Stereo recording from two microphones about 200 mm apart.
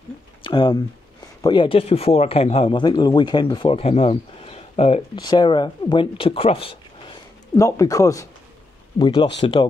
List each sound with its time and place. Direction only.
0.4 s speech: 20° left (ahead or behind)
7.5 s speech: 15° left (ahead or behind)